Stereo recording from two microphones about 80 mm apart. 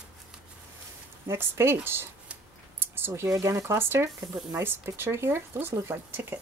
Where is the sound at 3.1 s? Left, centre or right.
Right.